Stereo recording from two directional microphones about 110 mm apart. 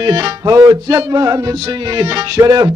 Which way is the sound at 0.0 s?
35° right (ahead or behind).